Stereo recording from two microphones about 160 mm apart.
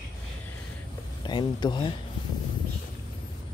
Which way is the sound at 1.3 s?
30° left (ahead or behind).